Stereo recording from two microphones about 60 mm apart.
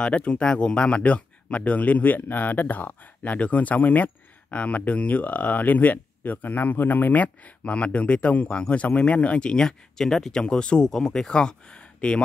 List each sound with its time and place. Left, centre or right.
0.0 s speech: centre